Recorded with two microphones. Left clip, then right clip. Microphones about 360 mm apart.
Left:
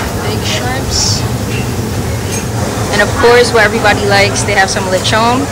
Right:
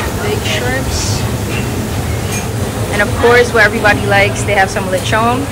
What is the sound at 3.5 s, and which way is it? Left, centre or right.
Speech, centre.